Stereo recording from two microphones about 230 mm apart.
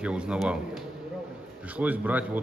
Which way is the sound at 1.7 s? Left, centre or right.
Centre.